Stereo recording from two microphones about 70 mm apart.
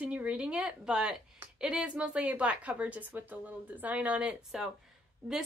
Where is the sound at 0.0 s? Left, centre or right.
Centre.